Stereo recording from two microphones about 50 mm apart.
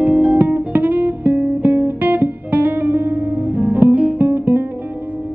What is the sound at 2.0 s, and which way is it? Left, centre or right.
Guitar, right.